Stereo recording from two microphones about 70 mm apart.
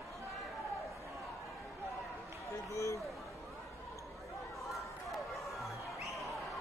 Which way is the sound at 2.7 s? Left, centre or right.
Left.